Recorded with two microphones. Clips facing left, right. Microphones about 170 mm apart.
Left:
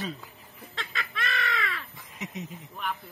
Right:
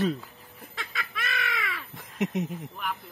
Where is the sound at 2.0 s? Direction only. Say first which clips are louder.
Right 9 dB; 65° right (ahead or behind).